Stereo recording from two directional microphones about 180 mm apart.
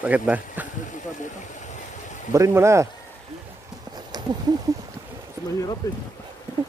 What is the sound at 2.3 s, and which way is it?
Speech, 15° right (ahead or behind).